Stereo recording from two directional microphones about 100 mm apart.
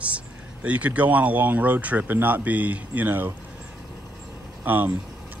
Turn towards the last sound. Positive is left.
turn(degrees=-20)  # may be behind; listen again after turning